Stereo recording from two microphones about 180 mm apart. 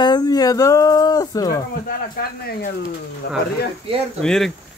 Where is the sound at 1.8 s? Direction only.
55° left (ahead or behind).